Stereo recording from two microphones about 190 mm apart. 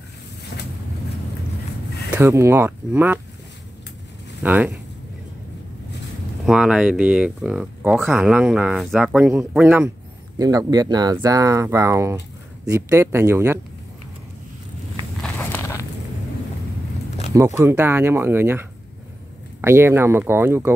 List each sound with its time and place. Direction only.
2.1 s speech: 15° right (ahead or behind)
4.4 s speech: 10° right (ahead or behind)
6.4 s speech: 5° right (ahead or behind)
15.3 s walk: 15° left (ahead or behind)
17.6 s speech: 10° right (ahead or behind)